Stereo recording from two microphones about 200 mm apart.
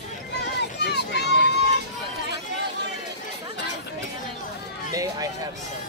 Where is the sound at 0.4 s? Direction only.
55° left (ahead or behind).